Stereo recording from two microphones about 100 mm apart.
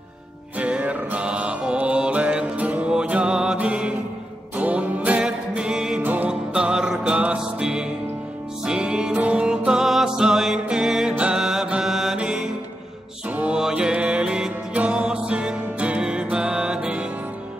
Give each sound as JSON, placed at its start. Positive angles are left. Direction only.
{"t": 0.6, "sound": "music", "side_deg": -15}